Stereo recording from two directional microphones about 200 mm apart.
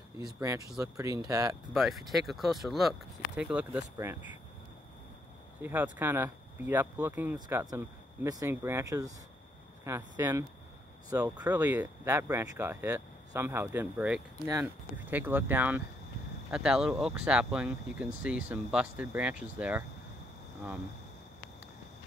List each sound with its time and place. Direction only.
0.2 s speech: 15° right (ahead or behind)
1.7 s speech: centre (ahead or behind)
5.6 s speech: 10° right (ahead or behind)